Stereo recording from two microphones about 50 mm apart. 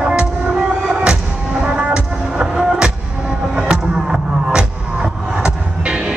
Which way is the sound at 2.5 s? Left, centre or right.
Centre.